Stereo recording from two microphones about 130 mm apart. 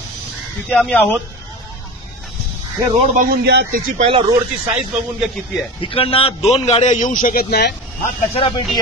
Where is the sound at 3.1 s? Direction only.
90° right.